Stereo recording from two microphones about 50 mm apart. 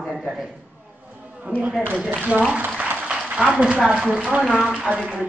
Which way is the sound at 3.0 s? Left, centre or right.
Right.